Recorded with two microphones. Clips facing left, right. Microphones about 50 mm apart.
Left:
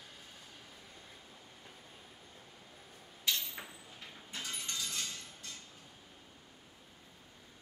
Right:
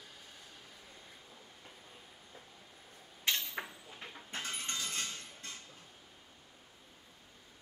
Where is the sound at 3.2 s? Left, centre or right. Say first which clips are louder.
Right 2 dB; right.